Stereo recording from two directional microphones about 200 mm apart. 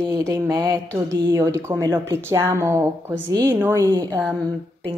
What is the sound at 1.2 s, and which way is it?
Speech, 15° right (ahead or behind).